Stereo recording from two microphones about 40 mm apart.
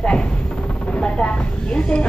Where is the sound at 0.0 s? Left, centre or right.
Left.